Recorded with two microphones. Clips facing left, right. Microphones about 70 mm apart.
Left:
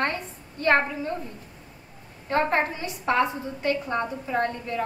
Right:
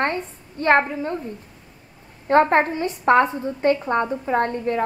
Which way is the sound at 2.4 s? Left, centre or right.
Right.